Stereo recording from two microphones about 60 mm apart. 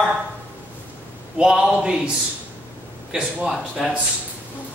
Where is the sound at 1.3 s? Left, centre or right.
Centre.